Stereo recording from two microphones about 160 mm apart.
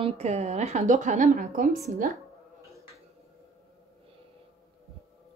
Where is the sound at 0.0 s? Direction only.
45° right (ahead or behind); by 1.8 s 60° right (ahead or behind).